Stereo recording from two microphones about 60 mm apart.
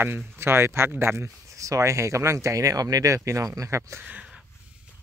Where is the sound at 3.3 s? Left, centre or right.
Right.